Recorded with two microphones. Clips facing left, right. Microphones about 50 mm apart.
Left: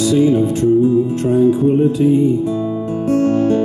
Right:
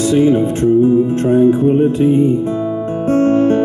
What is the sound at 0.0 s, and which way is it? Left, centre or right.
Music, right.